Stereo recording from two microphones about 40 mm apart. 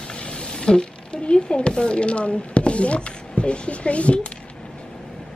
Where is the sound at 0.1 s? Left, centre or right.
Left.